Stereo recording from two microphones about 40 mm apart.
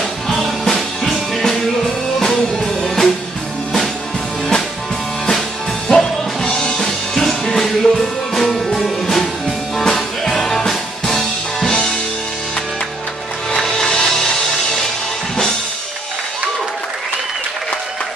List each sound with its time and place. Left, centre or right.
0.3 s music: centre
2.1 s music: centre
5.9 s music: centre
10.7 s music: centre
11.6 s music: centre
13.6 s music: centre